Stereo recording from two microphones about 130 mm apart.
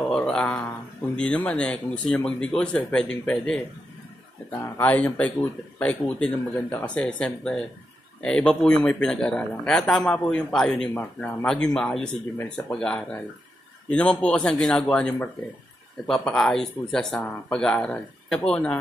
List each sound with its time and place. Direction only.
0.0 s a sound: 5° left (ahead or behind)
1.1 s speech: 10° left (ahead or behind)
4.7 s speech: 10° left (ahead or behind)
12.4 s speech: 15° left (ahead or behind)